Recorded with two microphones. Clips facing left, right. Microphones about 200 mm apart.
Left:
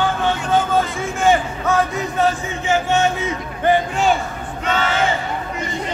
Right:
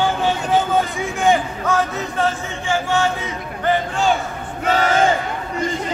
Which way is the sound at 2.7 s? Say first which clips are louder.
Left 2 dB; 20° left (ahead or behind).